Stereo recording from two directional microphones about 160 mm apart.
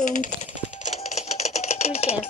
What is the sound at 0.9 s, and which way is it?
Typewriter, 45° left (ahead or behind).